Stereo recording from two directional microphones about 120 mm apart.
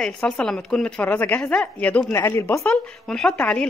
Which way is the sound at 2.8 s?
5° left (ahead or behind).